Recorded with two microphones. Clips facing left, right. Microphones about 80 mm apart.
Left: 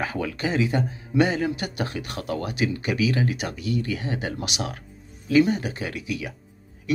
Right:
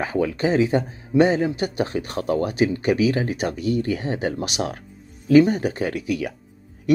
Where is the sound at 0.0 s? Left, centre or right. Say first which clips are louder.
Right 5 dB; right.